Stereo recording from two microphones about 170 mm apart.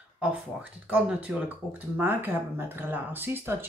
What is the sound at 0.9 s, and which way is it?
Speech, 5° right (ahead or behind).